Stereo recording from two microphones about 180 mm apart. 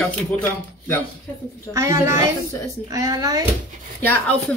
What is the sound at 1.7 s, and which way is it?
A child's voice, 15° right (ahead or behind).